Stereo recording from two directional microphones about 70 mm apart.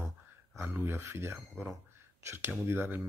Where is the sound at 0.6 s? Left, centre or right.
Right.